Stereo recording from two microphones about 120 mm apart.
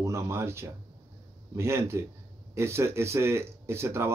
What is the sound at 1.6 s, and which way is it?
Speech, 20° right (ahead or behind).